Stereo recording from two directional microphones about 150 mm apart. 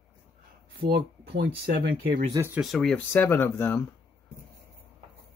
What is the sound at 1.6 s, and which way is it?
Speech, 90° right.